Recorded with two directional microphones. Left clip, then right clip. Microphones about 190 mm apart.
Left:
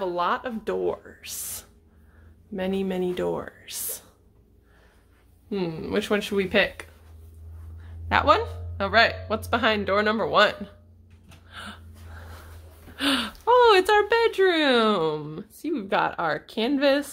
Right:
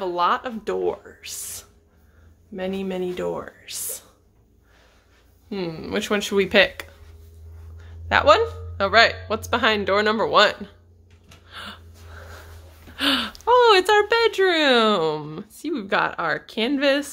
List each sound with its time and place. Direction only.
0.0 s speech: centre (ahead or behind)
2.5 s speech: 25° left (ahead or behind)
5.5 s speech: 5° left (ahead or behind); by 6.9 s 15° right (ahead or behind)
8.1 s speech: centre (ahead or behind)
11.4 s gasp: 5° right (ahead or behind)
12.9 s speech: centre (ahead or behind)